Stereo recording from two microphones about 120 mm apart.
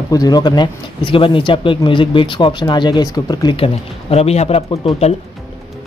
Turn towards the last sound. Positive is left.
turn(degrees=55)  # may be behind; listen again after turning